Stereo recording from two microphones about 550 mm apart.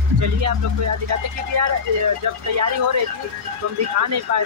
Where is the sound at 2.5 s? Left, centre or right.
Right.